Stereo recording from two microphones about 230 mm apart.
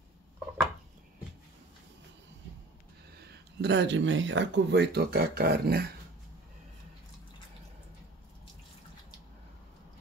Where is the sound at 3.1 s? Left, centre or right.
Right.